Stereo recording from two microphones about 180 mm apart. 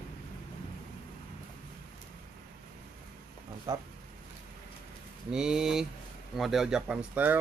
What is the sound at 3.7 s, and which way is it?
Speech, 20° right (ahead or behind).